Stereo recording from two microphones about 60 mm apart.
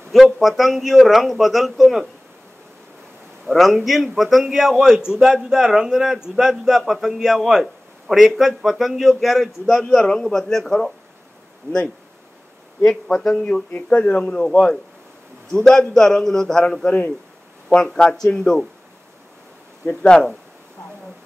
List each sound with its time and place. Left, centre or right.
0.1 s a man's voice: centre
3.4 s a man's voice: centre
11.7 s speech: right
13.8 s a man's voice: centre
19.9 s speech: centre